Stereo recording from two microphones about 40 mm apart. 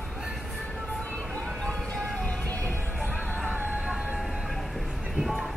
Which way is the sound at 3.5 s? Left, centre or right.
Right.